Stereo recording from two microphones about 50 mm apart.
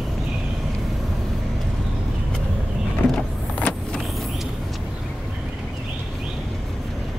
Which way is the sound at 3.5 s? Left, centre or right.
Left.